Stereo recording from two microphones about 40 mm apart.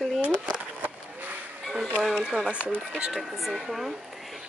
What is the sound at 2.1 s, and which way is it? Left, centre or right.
Speech, right.